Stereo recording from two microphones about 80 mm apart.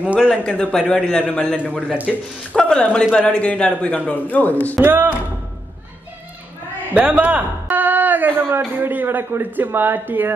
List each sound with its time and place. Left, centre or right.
0.3 s a man's voice: centre
2.1 s speech: centre
2.5 s a man's voice: centre
4.8 s a man's voice: right
6.9 s a man's voice: centre